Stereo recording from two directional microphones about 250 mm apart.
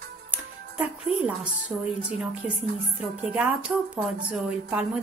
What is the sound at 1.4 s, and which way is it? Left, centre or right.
A woman's voice, centre.